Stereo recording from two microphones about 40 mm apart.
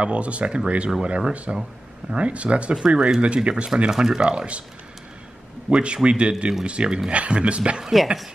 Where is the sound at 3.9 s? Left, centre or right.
Centre.